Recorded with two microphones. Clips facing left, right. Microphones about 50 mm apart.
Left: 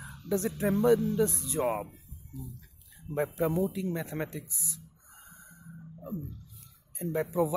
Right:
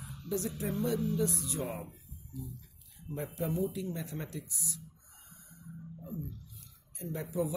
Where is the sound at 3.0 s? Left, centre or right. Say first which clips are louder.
Left 7 dB; left.